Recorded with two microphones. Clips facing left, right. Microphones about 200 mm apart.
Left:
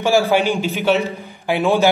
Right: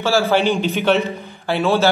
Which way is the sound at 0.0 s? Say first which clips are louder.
Left 1 dB; 15° left (ahead or behind).